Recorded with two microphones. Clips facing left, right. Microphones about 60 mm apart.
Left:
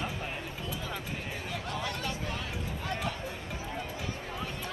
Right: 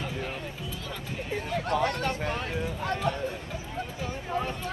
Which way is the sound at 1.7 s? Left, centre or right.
Right.